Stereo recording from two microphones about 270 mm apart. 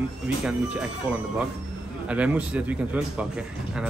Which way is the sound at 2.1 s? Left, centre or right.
Centre.